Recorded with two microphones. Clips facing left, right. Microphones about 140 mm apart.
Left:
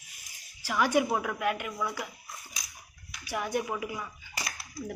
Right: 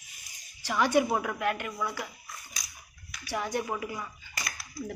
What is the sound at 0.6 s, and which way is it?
Speech, 10° left (ahead or behind).